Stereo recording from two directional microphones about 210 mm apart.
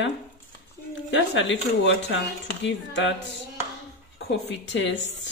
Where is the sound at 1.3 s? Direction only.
60° left (ahead or behind).